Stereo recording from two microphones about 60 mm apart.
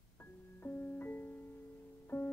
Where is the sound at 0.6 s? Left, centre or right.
Left.